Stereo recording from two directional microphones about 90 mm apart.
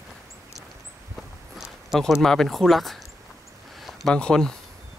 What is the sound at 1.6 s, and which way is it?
Speech, centre (ahead or behind).